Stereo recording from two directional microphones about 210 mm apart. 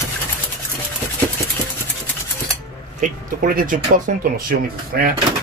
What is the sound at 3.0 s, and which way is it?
Speech, 40° right (ahead or behind).